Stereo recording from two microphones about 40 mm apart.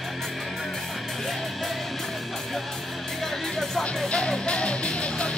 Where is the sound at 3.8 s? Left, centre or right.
Left.